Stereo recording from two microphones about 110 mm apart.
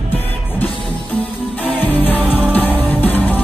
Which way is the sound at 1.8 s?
15° left (ahead or behind).